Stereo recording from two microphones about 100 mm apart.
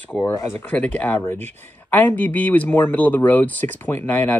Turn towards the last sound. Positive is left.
turn(degrees=20)  # may be behind; listen again after turning